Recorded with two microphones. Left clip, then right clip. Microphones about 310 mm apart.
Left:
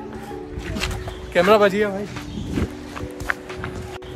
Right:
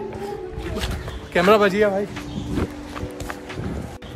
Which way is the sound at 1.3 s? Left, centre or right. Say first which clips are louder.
Left 1 dB; centre.